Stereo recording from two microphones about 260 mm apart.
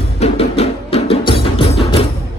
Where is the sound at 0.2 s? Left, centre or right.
Left.